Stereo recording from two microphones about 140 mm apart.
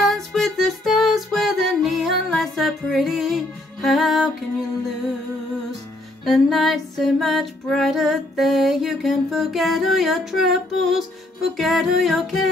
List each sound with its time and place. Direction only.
0.0 s music: centre (ahead or behind)
6.2 s female singing: centre (ahead or behind)